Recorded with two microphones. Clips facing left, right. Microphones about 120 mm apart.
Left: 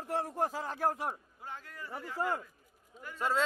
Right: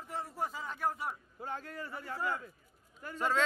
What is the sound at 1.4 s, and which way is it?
Speech, 40° right (ahead or behind).